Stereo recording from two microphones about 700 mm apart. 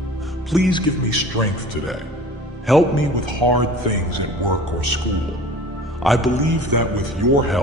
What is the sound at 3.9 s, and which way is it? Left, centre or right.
Speech, right.